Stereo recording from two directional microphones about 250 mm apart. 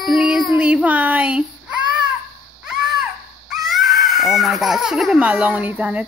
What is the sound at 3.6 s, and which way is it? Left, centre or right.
Speech, centre.